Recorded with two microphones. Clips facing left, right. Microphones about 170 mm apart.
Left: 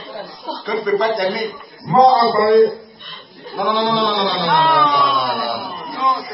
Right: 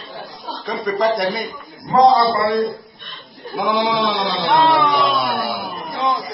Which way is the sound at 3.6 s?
5° right (ahead or behind).